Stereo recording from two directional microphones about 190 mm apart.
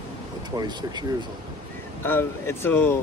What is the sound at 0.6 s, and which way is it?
Speech, 20° right (ahead or behind).